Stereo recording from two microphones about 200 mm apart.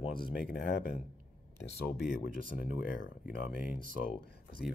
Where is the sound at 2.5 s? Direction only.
45° left (ahead or behind).